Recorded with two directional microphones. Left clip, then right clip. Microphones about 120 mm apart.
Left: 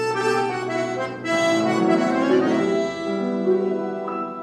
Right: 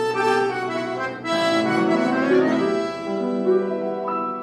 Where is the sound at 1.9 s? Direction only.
30° left (ahead or behind).